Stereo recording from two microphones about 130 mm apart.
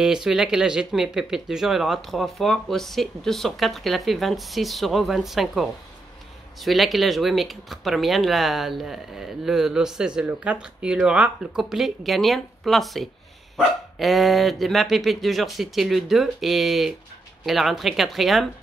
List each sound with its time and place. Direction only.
0.0 s speech: 5° right (ahead or behind)